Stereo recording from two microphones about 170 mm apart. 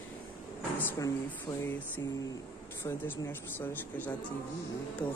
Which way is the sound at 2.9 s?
10° left (ahead or behind).